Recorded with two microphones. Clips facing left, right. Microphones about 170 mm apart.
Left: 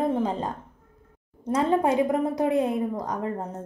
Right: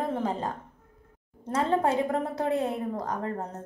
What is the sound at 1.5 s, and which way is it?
A woman's voice, 15° left (ahead or behind).